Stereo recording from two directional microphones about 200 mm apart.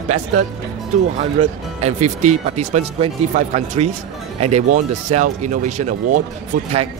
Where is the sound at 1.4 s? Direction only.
35° right (ahead or behind).